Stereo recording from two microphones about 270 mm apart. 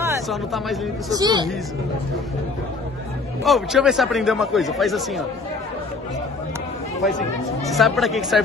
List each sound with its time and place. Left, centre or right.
0.3 s a man's voice: centre
1.1 s speech: centre
3.4 s a man's voice: centre
7.7 s a man's voice: centre